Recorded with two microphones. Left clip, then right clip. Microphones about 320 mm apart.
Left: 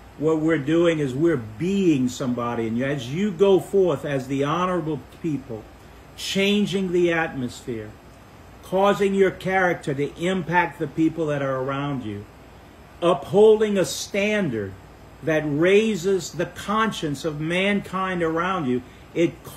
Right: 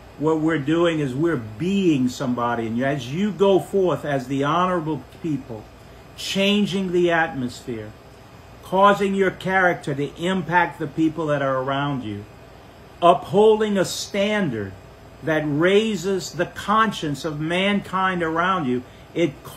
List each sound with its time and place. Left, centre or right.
0.2 s speech: centre
6.2 s a man's voice: centre